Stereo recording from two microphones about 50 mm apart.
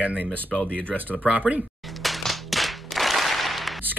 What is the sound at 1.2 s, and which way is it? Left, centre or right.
Speech, right.